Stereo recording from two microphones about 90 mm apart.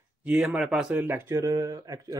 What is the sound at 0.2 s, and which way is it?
Speech, 10° right (ahead or behind).